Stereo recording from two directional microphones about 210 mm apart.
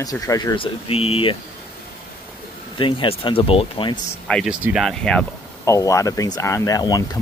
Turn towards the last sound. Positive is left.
turn(degrees=15)  # may be behind; listen again after turning